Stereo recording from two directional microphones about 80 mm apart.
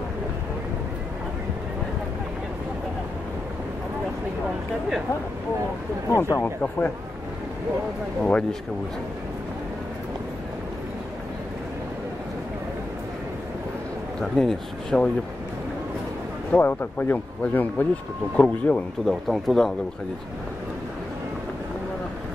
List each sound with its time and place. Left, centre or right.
6.1 s speech: left
6.4 s speech: left
8.2 s speech: centre
14.2 s speech: centre
16.5 s speech: left
19.0 s speech: centre